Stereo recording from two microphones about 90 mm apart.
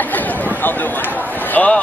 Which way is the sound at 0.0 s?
20° left (ahead or behind).